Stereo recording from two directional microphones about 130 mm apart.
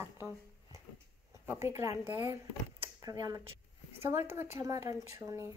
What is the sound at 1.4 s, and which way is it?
A woman's voice, 20° right (ahead or behind).